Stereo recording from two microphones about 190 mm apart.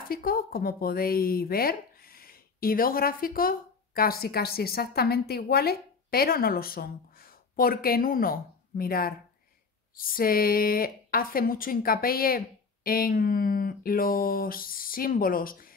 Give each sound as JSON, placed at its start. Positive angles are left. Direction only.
{"t": 0.1, "sound": "speech", "side_deg": 50}